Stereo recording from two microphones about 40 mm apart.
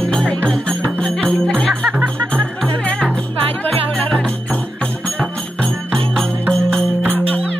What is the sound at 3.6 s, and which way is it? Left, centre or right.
Music, left.